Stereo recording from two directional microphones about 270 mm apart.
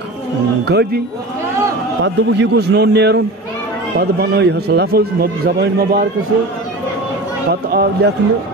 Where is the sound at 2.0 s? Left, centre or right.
Right.